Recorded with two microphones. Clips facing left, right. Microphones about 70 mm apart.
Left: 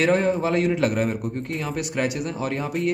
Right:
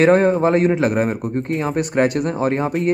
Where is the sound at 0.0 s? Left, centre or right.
Right.